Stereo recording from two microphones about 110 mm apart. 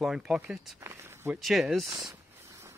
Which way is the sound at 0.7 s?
25° right (ahead or behind).